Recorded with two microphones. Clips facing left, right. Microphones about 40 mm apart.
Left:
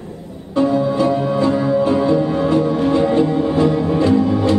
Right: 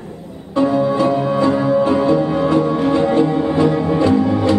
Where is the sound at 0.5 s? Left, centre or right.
Centre.